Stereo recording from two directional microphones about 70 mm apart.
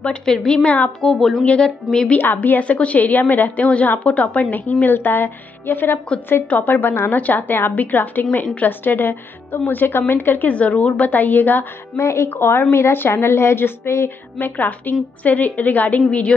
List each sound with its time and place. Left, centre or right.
0.0 s a woman's voice: centre
1.4 s a woman's voice: centre
2.1 s a woman's voice: left
11.0 s a woman's voice: left
12.0 s a woman's voice: left; by 16.3 s centre